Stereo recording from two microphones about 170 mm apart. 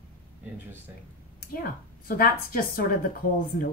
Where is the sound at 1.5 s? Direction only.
60° left (ahead or behind).